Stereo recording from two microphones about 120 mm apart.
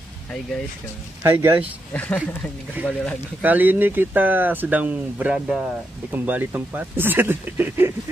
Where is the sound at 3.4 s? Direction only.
15° right (ahead or behind).